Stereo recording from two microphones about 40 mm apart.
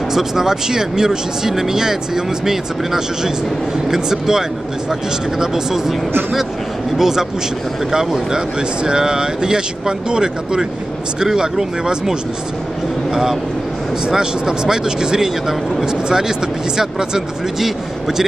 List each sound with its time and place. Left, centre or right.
0.1 s speech: centre
7.0 s speech: centre